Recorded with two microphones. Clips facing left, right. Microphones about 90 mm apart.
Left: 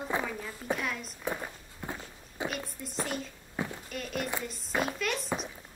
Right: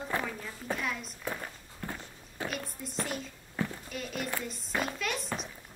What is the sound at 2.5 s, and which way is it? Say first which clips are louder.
Speech: even; centre (ahead or behind).